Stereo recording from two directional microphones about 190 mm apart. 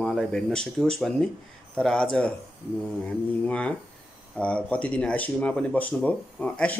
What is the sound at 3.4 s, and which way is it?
Speech, 5° left (ahead or behind).